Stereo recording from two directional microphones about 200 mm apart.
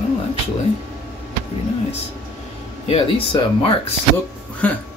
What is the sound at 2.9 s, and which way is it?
Speech, 25° left (ahead or behind).